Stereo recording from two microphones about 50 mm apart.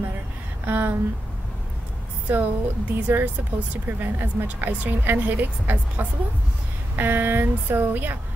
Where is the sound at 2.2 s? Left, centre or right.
Right.